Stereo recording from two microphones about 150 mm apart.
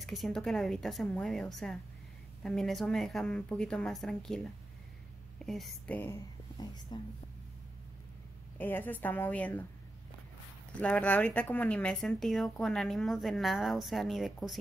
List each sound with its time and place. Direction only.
0.0 s speech: centre (ahead or behind)
5.4 s speech: centre (ahead or behind)
6.6 s speech: 30° left (ahead or behind)
8.5 s a woman's voice: 10° left (ahead or behind)
10.8 s speech: 10° left (ahead or behind)